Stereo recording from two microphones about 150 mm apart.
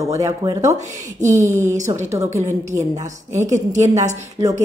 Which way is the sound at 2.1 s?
20° right (ahead or behind).